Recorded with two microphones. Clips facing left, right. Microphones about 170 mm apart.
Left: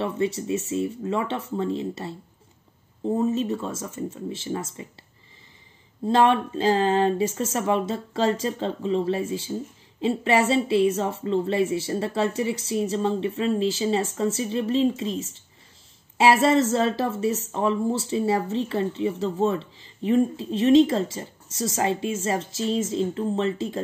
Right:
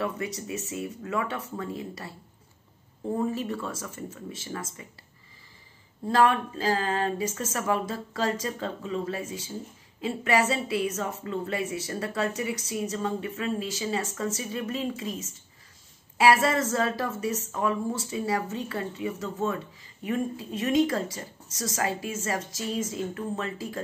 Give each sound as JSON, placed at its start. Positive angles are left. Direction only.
{"t": 0.0, "sound": "speech", "side_deg": 25}
{"t": 6.0, "sound": "speech", "side_deg": 25}